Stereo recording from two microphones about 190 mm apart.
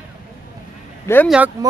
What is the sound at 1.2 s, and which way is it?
Speech, 5° right (ahead or behind).